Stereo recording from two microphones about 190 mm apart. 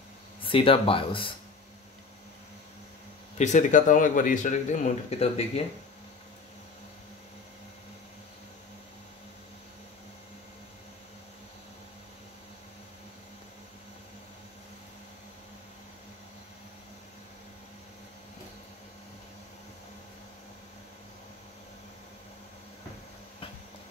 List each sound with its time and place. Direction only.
0.4 s speech: 30° left (ahead or behind)
3.3 s speech: 40° left (ahead or behind)